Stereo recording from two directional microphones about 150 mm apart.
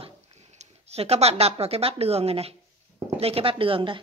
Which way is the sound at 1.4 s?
45° right (ahead or behind).